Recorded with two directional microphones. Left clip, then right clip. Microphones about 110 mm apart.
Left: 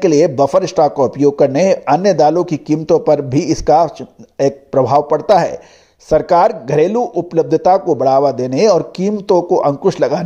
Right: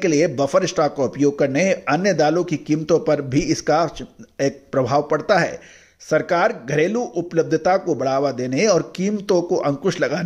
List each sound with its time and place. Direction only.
0.0 s speech: 25° left (ahead or behind)